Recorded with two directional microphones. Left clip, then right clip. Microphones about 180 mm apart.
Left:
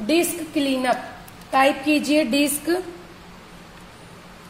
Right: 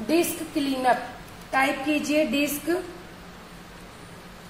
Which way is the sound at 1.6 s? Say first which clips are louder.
Left 6 dB; 60° left (ahead or behind).